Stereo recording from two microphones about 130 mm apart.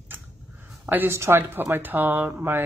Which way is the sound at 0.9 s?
15° right (ahead or behind).